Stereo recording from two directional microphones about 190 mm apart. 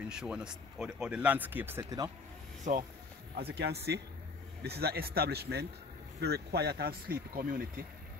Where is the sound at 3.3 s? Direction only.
60° right (ahead or behind).